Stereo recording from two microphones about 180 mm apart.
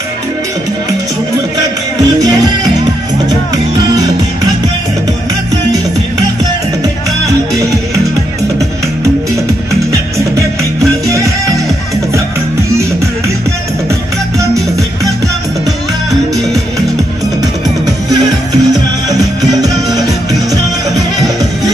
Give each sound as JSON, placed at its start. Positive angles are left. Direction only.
{"t": 17.4, "sound": "music", "side_deg": -20}